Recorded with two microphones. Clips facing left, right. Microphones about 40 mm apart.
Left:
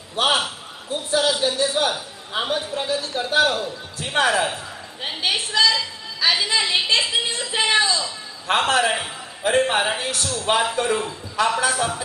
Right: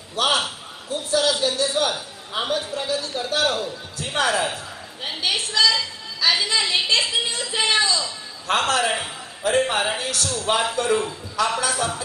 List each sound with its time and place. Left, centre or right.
0.1 s a sound: centre
1.5 s a man's voice: centre
11.4 s a man's voice: left
11.7 s a man's voice: centre